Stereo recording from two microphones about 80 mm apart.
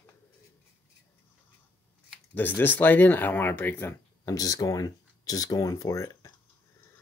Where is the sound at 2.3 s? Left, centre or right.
Left.